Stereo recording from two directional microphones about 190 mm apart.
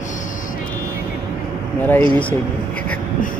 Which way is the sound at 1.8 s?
10° left (ahead or behind).